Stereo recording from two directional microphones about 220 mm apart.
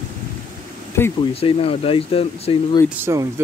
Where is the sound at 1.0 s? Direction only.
10° left (ahead or behind).